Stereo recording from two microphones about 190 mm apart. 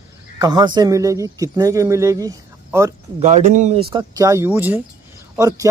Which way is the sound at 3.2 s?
40° right (ahead or behind).